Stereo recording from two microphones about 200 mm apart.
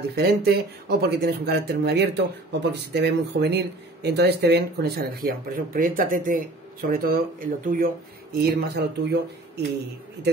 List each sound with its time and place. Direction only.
0.1 s speech: 50° right (ahead or behind)